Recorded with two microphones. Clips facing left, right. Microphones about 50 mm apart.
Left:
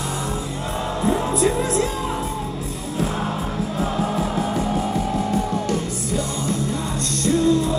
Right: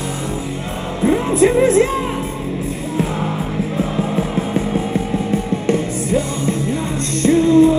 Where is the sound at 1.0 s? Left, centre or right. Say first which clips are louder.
Right 7 dB; right.